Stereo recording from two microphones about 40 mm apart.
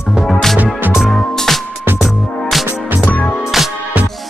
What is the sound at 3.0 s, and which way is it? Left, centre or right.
Music, left.